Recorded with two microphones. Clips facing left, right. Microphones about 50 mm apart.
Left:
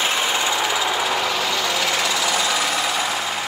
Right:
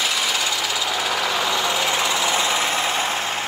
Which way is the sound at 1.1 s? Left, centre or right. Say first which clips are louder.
Even; centre.